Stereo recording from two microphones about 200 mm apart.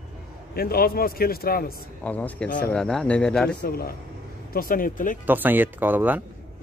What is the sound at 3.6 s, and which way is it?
A man's voice, 50° left (ahead or behind).